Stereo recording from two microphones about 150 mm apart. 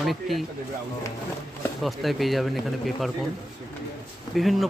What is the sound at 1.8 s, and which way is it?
Speech, centre (ahead or behind).